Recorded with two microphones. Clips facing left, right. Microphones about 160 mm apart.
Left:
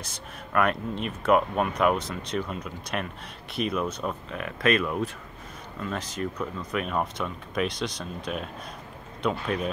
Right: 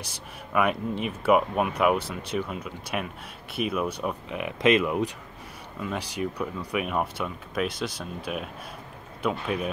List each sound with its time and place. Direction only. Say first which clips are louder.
0.0 s speech: even; 10° right (ahead or behind)